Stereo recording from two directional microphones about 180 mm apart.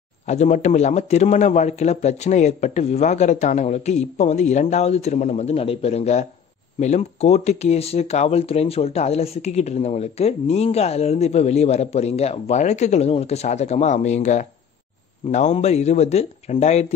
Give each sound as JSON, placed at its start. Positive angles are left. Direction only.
{"t": 0.3, "sound": "speech", "side_deg": 40}